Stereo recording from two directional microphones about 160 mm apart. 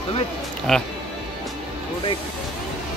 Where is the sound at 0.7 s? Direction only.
Centre (ahead or behind).